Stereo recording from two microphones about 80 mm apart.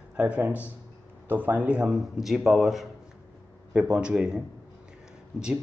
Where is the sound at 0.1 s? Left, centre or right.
Centre.